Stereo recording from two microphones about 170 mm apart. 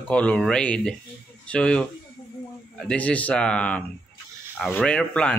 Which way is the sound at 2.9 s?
10° left (ahead or behind).